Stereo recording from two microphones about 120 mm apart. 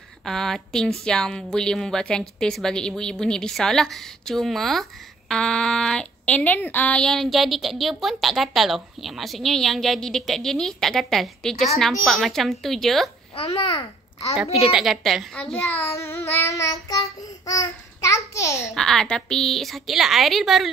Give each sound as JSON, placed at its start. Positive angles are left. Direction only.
{"t": 0.2, "sound": "speech", "side_deg": 5}
{"t": 13.5, "sound": "a child's voice", "side_deg": 40}
{"t": 14.7, "sound": "speech", "side_deg": 0}
{"t": 15.3, "sound": "a child's voice", "side_deg": 10}
{"t": 15.8, "sound": "child singing", "side_deg": 25}
{"t": 18.6, "sound": "speech", "side_deg": 0}